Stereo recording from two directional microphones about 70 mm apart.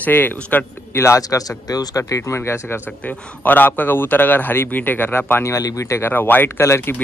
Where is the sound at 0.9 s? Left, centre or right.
Left.